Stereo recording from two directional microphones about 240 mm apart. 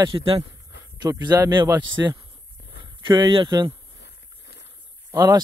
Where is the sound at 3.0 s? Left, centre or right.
Centre.